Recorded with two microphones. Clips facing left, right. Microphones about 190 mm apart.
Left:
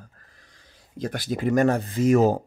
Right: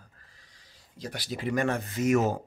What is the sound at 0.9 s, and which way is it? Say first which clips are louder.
Speech: left 8 dB; 50° left (ahead or behind).